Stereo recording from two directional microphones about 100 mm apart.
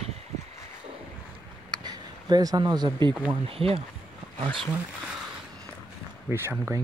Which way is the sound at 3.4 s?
70° right (ahead or behind).